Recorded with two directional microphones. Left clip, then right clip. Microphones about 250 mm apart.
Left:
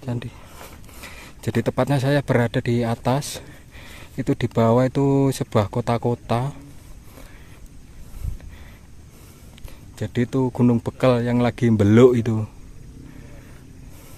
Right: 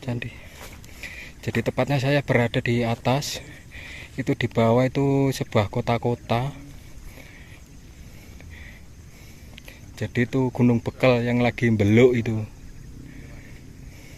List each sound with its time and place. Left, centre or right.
0.0 s speech: centre
1.0 s speech: left
9.9 s speech: centre